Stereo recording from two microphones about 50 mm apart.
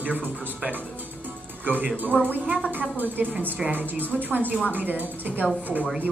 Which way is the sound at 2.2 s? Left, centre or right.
Right.